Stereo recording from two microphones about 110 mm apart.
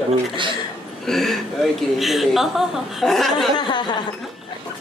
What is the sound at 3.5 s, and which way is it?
Speech, 45° left (ahead or behind).